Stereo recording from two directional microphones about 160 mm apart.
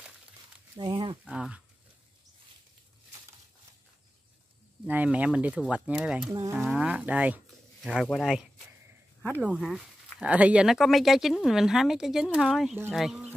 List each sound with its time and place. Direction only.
0.7 s a sound: 30° right (ahead or behind)
1.3 s speech: 5° right (ahead or behind)
4.8 s speech: 10° right (ahead or behind)
9.6 s speech: centre (ahead or behind)